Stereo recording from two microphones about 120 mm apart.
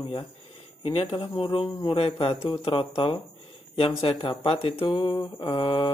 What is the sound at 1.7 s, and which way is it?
Speech, 40° left (ahead or behind).